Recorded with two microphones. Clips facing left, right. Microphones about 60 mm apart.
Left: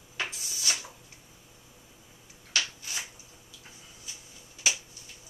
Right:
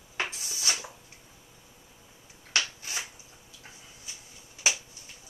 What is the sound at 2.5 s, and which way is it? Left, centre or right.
Shuffling cards, right.